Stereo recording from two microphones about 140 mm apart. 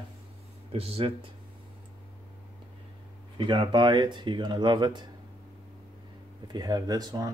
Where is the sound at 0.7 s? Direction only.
45° right (ahead or behind).